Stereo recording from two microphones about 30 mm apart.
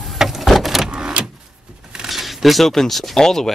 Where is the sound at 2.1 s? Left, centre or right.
Centre.